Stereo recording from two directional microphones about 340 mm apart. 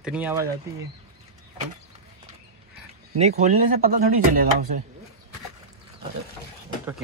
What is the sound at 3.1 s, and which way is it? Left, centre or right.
Speech, centre.